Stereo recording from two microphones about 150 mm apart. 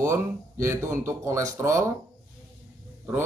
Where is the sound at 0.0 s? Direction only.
20° right (ahead or behind).